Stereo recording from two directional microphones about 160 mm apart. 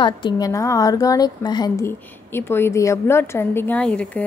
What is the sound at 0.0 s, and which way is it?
A woman's voice, 25° left (ahead or behind).